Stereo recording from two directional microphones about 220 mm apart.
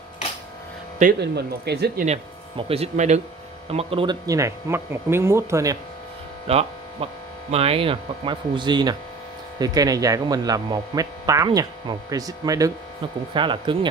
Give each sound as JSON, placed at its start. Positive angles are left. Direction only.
{"t": 1.2, "sound": "speech", "side_deg": -50}
{"t": 2.0, "sound": "speech", "side_deg": -25}
{"t": 6.4, "sound": "a sound", "side_deg": -25}
{"t": 7.5, "sound": "speech", "side_deg": -25}